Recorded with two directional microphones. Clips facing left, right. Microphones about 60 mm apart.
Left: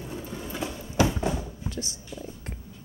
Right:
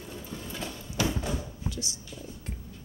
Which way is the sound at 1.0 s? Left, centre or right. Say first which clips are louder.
Left 6 dB; left.